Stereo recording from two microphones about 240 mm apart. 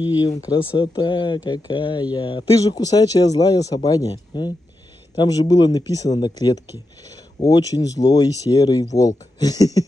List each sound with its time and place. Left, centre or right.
0.4 s speech: centre